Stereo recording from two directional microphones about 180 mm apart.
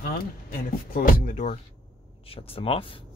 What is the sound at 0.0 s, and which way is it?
Speech, 55° left (ahead or behind).